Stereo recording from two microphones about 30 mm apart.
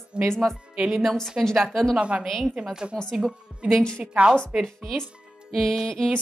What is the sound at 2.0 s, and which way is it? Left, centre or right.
Speech, right.